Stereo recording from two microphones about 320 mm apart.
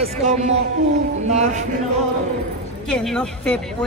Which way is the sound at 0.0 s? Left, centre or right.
Right.